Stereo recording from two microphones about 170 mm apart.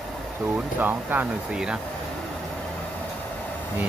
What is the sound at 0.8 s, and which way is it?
Speech, 10° right (ahead or behind).